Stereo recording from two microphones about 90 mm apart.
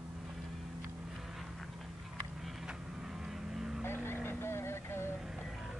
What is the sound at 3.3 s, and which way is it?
Vehicle, 5° right (ahead or behind).